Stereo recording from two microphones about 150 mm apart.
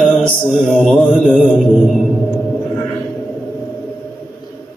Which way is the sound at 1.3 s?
5° right (ahead or behind).